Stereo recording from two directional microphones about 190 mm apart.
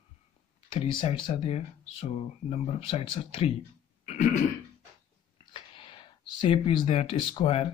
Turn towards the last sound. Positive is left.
turn(degrees=30)  # may be behind; listen again after turning